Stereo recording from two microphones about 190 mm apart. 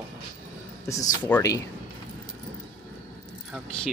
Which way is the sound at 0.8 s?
15° left (ahead or behind).